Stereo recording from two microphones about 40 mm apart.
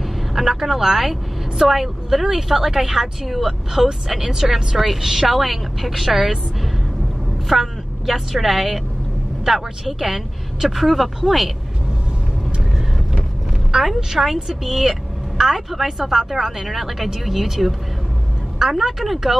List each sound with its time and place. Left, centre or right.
0.3 s a woman's voice: centre
13.8 s a woman's voice: centre